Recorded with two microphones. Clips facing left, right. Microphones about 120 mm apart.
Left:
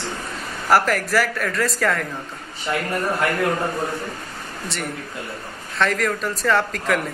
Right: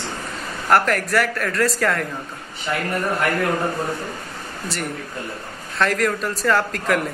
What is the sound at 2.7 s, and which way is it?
Speech, 15° left (ahead or behind).